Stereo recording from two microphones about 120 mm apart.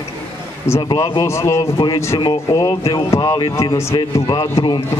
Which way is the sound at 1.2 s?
25° left (ahead or behind).